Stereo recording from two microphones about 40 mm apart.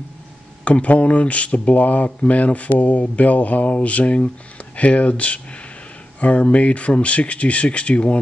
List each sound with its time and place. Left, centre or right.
0.7 s speech: left